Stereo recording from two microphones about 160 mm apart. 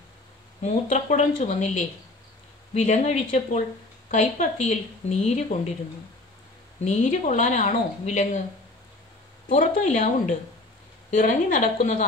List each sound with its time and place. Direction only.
0.6 s speech: 45° left (ahead or behind)
6.8 s speech: 45° left (ahead or behind)
9.5 s speech: 45° left (ahead or behind)